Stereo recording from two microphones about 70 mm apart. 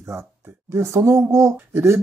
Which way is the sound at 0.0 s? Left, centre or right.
Right.